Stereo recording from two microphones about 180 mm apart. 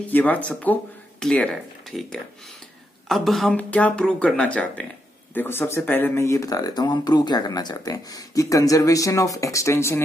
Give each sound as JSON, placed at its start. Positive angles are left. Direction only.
{"t": 0.0, "sound": "speech", "side_deg": 10}